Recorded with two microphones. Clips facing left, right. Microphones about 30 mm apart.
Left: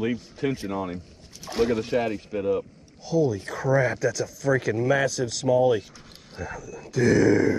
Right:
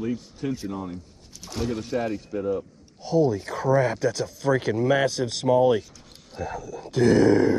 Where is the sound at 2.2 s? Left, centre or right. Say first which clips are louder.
Left 2 dB; left.